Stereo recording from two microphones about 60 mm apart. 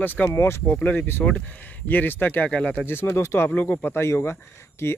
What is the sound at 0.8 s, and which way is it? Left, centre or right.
Speech, left.